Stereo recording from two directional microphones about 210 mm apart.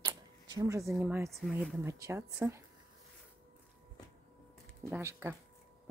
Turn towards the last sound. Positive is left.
turn(degrees=-10)  # may be behind; listen again after turning